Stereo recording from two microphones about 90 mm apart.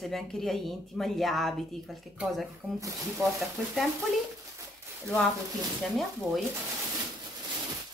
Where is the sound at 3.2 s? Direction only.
30° right (ahead or behind).